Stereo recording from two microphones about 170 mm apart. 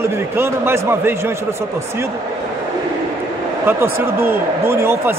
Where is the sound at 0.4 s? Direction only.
15° right (ahead or behind).